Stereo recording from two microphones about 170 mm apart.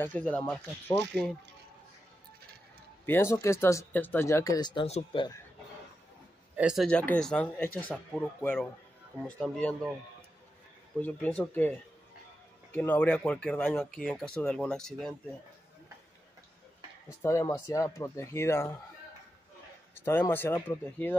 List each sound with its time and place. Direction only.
0.0 s speech: 10° left (ahead or behind)
3.1 s speech: 15° left (ahead or behind); by 5.3 s 35° left (ahead or behind)
6.5 s speech: 5° right (ahead or behind)
6.9 s speech: 5° left (ahead or behind)
11.0 s speech: 10° left (ahead or behind)
12.7 s speech: 10° left (ahead or behind)
17.1 s speech: 15° left (ahead or behind)
20.0 s speech: 15° left (ahead or behind)